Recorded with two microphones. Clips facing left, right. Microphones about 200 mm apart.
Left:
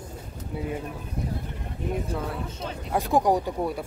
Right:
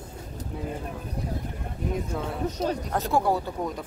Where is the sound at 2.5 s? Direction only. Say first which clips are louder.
Right 8 dB; 40° right (ahead or behind).